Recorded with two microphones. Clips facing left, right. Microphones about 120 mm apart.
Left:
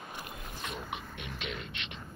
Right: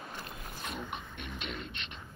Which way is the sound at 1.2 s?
45° right (ahead or behind).